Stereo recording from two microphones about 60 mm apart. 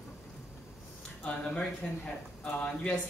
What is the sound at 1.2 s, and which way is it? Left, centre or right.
A man's voice, centre.